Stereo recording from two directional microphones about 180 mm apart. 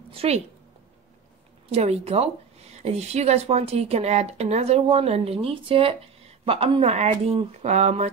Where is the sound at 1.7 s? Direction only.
35° right (ahead or behind).